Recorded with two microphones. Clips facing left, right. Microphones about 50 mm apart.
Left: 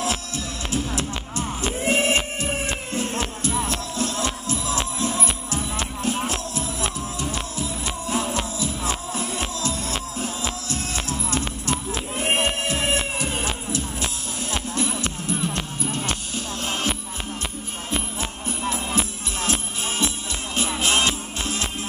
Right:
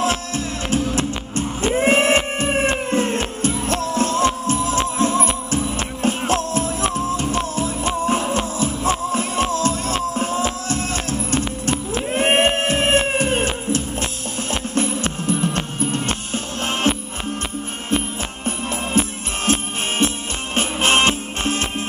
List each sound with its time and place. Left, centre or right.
0.0 s music: right
1.8 s a sound: right
2.9 s music: right
12.1 s a sound: right
13.1 s music: right
18.4 s music: right